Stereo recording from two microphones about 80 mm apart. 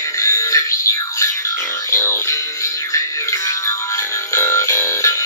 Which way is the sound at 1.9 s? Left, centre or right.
Left.